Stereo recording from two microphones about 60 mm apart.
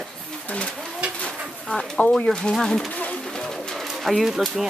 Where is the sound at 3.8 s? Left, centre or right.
Centre.